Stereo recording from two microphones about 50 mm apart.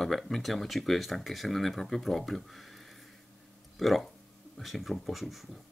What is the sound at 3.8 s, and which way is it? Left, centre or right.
Speech, centre.